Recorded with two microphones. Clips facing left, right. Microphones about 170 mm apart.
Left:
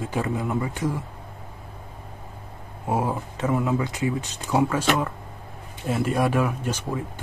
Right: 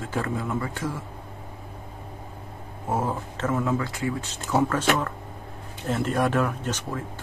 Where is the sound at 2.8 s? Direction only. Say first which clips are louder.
Left 2 dB; 10° left (ahead or behind).